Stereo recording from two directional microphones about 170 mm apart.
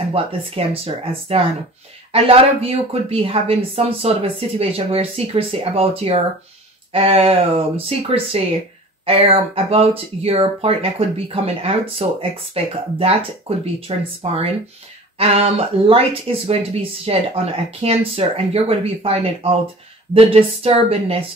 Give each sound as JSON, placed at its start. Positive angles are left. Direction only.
{"t": 0.1, "sound": "speech", "side_deg": -35}